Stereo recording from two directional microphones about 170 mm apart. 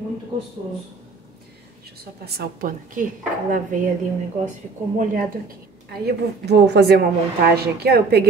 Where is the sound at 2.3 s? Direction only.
55° right (ahead or behind).